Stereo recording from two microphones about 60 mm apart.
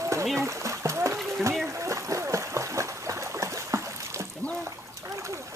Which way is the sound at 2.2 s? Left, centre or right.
Right.